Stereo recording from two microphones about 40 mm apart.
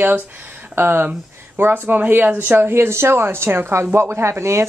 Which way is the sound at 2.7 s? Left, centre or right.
Right.